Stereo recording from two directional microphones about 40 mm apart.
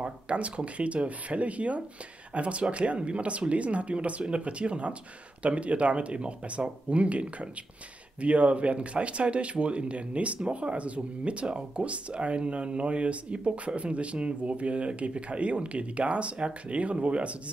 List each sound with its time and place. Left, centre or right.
0.0 s speech: right